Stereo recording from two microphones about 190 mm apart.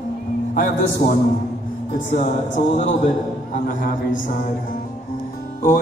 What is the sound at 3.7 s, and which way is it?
Speech, 45° left (ahead or behind).